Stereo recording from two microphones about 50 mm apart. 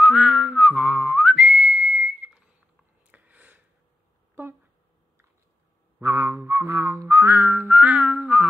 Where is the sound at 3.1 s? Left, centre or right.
Right.